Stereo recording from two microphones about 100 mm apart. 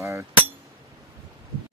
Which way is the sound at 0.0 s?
30° right (ahead or behind).